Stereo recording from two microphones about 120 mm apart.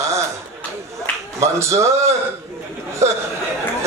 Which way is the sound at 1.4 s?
25° right (ahead or behind).